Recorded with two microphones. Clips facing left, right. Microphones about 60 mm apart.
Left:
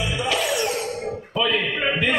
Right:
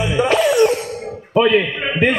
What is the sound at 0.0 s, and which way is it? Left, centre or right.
Music, right.